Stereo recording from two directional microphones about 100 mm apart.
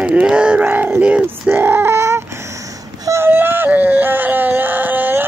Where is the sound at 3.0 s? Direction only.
25° right (ahead or behind).